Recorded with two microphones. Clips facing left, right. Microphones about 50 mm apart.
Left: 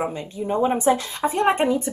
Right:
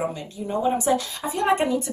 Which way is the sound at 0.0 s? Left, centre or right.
Left.